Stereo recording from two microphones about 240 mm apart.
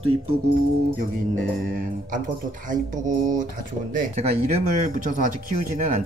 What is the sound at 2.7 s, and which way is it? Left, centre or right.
Speech, right.